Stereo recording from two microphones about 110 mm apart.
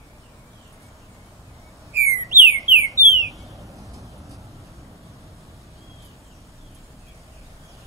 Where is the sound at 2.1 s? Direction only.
20° right (ahead or behind).